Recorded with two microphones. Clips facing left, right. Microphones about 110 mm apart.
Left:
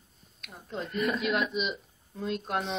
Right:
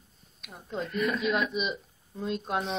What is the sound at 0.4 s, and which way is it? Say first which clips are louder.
Speech: right 2 dB; centre (ahead or behind).